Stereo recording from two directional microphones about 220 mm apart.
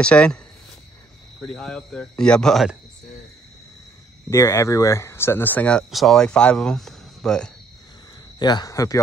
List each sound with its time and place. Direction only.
0.0 s speech: 5° left (ahead or behind)
1.4 s speech: 5° left (ahead or behind)
4.3 s speech: 15° left (ahead or behind)
8.4 s speech: 20° left (ahead or behind)